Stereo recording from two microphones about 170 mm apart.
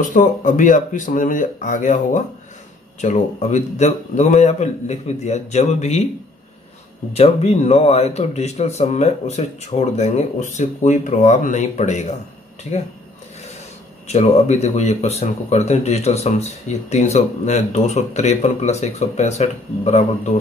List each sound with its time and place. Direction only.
0.0 s speech: 50° left (ahead or behind)
7.2 s speech: 40° left (ahead or behind)
14.0 s speech: 40° left (ahead or behind)